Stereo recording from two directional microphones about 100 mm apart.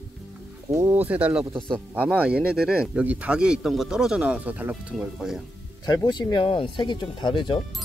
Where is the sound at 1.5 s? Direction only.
55° right (ahead or behind).